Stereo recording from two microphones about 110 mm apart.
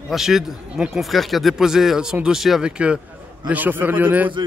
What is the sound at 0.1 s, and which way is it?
A man's voice, 5° right (ahead or behind).